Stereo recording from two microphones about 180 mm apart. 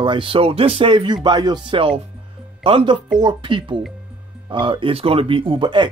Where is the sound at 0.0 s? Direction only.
30° right (ahead or behind).